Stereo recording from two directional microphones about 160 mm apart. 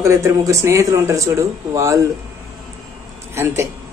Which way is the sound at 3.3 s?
15° right (ahead or behind).